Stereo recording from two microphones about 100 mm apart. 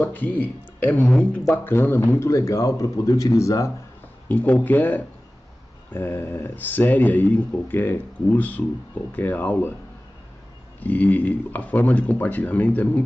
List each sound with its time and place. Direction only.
0.0 s a man's voice: 20° left (ahead or behind)
4.3 s speech: 15° left (ahead or behind)
10.8 s speech: 15° left (ahead or behind)